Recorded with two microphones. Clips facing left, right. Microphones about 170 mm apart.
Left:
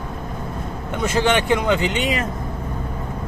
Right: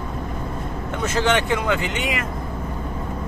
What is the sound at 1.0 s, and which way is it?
Speech, 15° left (ahead or behind).